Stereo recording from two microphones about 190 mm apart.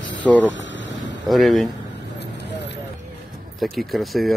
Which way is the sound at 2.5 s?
65° left (ahead or behind).